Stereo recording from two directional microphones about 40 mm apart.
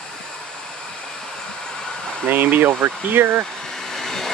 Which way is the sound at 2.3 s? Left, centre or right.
Right.